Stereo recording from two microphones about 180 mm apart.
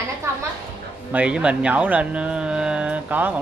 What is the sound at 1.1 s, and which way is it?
Speech, 5° right (ahead or behind).